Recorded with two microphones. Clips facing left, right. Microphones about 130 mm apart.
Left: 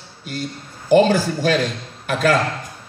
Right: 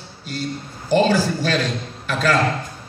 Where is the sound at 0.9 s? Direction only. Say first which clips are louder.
Left 3 dB; 50° left (ahead or behind).